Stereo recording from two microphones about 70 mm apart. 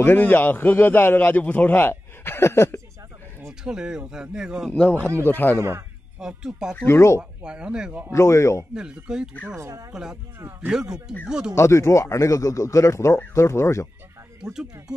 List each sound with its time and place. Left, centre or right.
0.0 s a man's voice: left
3.6 s speech: centre
4.7 s speech: centre
5.2 s a man's voice: left
5.6 s speech: right
6.1 s speech: centre
6.8 s speech: left
7.2 s speech: centre
8.1 s speech: left
8.9 s speech: centre
9.6 s speech: right
10.7 s speech: centre
11.5 s speech: left
14.4 s speech: centre